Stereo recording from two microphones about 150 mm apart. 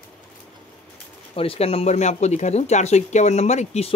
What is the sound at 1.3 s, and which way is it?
Speech, 40° left (ahead or behind).